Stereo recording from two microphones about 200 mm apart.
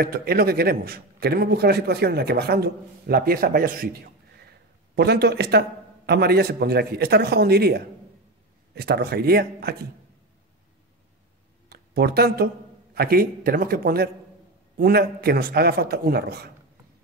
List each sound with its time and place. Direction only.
0.0 s a man's voice: 50° right (ahead or behind)
11.7 s a man's voice: 50° right (ahead or behind)